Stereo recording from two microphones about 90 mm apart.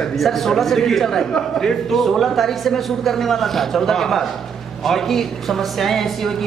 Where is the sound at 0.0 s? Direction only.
Centre (ahead or behind).